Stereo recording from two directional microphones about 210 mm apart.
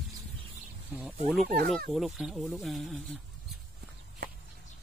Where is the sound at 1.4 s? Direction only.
45° right (ahead or behind).